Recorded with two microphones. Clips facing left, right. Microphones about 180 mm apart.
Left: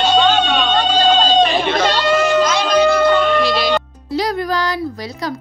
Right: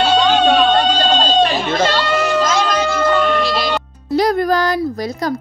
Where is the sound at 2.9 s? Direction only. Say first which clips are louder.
Left 2 dB; centre (ahead or behind).